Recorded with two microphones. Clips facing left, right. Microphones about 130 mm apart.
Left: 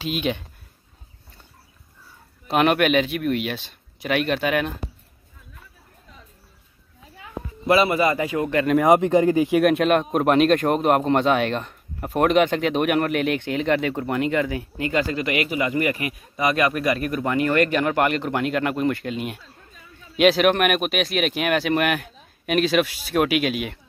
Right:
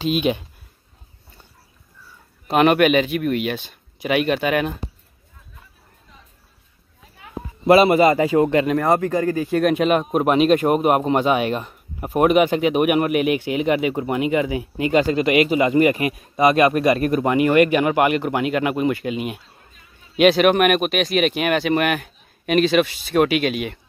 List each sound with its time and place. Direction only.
0.0 s a man's voice: 15° right (ahead or behind)
2.4 s speech: centre (ahead or behind)
7.6 s a man's voice: 25° right (ahead or behind)
8.8 s speech: 15° left (ahead or behind)
9.6 s a man's voice: centre (ahead or behind)